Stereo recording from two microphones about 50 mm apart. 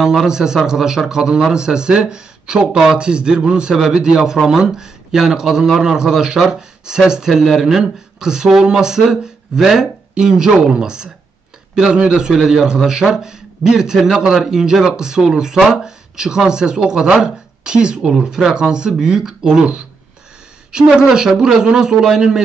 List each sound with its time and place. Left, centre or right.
0.2 s speech: centre
21.1 s speech: centre